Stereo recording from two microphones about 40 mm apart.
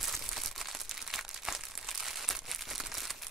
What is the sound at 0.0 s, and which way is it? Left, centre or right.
Crumpling, centre.